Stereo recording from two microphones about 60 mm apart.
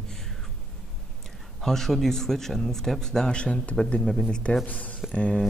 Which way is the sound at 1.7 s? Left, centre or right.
Centre.